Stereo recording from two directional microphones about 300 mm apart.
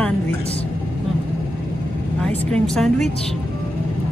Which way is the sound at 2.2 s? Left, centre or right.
Centre.